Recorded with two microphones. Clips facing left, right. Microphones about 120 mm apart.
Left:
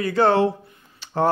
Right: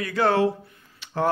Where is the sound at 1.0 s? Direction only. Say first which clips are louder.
Left 3 dB; 30° left (ahead or behind).